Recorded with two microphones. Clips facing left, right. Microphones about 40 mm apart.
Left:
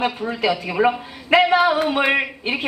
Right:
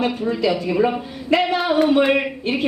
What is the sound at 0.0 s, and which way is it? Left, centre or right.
A man's voice, centre.